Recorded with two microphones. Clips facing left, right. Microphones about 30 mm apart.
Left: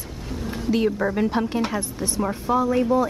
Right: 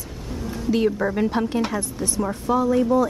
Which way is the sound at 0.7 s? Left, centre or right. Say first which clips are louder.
Right 1 dB; centre.